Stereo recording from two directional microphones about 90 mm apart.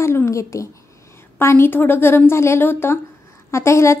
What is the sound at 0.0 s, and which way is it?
A woman's voice, 30° left (ahead or behind).